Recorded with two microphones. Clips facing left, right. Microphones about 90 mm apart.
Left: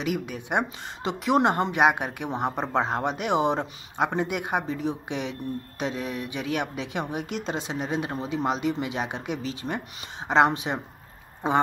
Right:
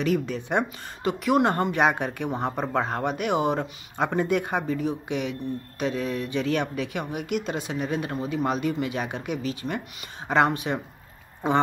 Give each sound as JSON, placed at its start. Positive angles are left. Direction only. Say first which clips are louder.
{"t": 0.0, "sound": "speech", "louder": "right 4 dB", "side_deg": 15}